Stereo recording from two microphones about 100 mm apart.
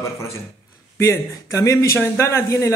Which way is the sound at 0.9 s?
30° left (ahead or behind).